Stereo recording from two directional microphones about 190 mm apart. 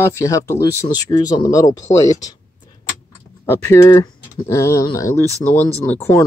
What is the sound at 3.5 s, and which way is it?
Speech, 15° left (ahead or behind).